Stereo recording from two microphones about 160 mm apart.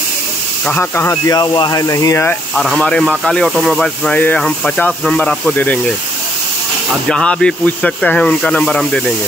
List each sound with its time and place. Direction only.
0.7 s speech: 15° left (ahead or behind)
2.5 s speech: centre (ahead or behind)
7.1 s speech: 5° left (ahead or behind)